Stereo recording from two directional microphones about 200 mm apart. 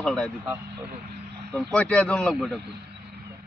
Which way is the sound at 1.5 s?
5° left (ahead or behind).